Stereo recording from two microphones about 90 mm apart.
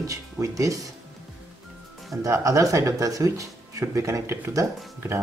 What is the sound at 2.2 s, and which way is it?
Speech, 35° right (ahead or behind).